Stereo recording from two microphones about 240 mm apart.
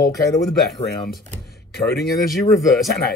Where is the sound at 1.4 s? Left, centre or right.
Left.